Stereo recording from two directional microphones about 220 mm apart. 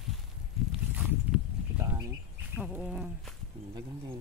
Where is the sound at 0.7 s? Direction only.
5° right (ahead or behind).